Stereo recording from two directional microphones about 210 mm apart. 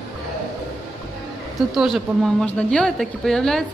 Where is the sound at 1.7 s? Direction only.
Centre (ahead or behind).